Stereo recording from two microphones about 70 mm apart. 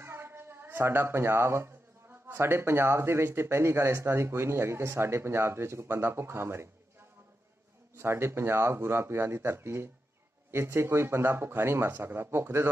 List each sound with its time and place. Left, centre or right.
0.0 s a sound: right
2.3 s speech: right
7.9 s speech: right